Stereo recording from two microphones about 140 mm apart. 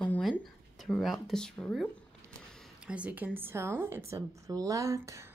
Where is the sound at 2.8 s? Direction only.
10° right (ahead or behind).